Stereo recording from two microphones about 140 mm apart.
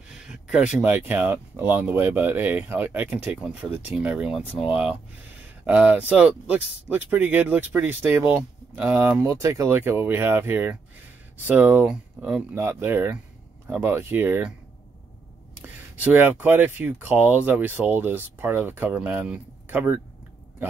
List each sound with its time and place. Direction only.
0.1 s speech: 5° right (ahead or behind)
5.7 s speech: 10° right (ahead or behind)
15.6 s speech: 10° right (ahead or behind)